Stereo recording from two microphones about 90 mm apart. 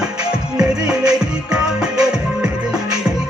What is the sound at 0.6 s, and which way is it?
Music, 10° right (ahead or behind).